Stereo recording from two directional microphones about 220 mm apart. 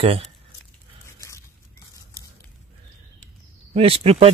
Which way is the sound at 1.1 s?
15° left (ahead or behind).